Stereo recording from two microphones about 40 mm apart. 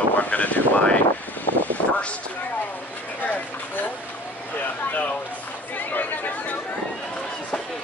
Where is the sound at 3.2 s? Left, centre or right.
Left.